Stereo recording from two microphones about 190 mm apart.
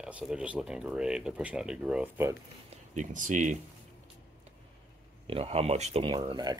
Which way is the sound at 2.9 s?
40° right (ahead or behind).